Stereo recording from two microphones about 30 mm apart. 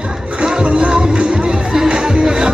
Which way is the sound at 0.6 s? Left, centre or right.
Right.